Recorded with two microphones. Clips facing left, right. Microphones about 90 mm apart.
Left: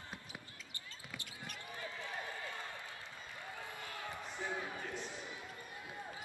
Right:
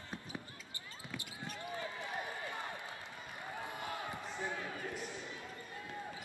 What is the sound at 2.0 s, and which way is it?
Run, 20° right (ahead or behind).